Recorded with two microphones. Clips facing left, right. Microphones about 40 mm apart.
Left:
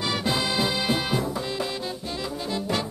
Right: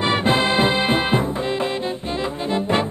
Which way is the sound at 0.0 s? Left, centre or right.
Right.